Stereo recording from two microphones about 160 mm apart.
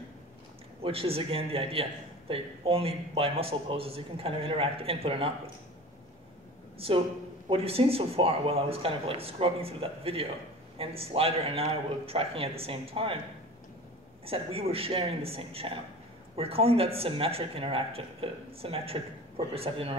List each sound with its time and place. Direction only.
0.8 s a man's voice: 35° right (ahead or behind)
7.4 s a man's voice: 35° right (ahead or behind)
14.2 s a man's voice: 35° right (ahead or behind)